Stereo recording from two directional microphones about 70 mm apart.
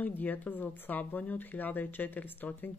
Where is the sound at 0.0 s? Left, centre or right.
Left.